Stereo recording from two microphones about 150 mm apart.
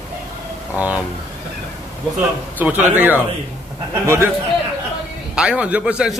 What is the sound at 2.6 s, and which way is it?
A man's voice, 10° right (ahead or behind).